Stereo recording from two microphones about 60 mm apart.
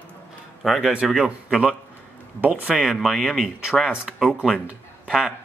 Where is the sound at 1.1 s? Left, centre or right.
Centre.